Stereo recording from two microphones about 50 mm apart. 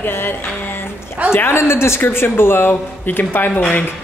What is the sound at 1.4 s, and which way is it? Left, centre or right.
A woman's voice, left.